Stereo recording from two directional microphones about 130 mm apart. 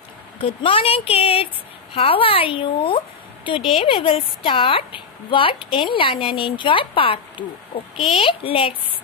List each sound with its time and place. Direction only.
0.4 s a woman's voice: 45° left (ahead or behind)